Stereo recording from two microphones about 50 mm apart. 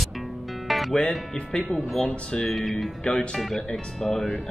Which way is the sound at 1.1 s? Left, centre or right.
Centre.